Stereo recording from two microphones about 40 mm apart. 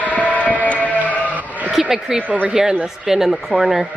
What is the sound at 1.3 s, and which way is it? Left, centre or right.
Sheep, right.